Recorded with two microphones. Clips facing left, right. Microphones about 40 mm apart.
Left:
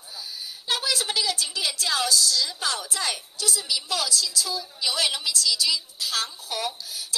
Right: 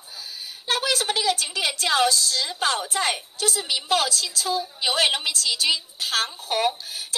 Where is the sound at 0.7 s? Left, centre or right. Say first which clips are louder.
Right 3 dB; right.